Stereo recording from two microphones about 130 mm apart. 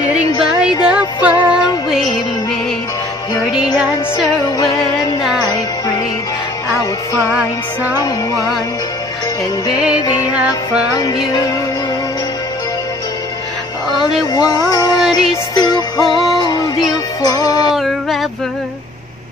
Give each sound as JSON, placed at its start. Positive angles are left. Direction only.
{"t": 0.8, "sound": "music", "side_deg": -10}
{"t": 10.3, "sound": "music", "side_deg": -10}
{"t": 11.0, "sound": "music", "side_deg": 30}
{"t": 14.3, "sound": "music", "side_deg": 30}
{"t": 16.0, "sound": "music", "side_deg": 0}
{"t": 16.3, "sound": "music", "side_deg": 30}
{"t": 17.7, "sound": "a sound", "side_deg": 0}